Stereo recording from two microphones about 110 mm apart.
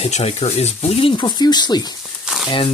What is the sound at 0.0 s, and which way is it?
Speech, 75° left (ahead or behind).